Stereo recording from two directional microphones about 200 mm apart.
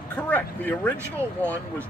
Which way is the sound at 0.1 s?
10° left (ahead or behind).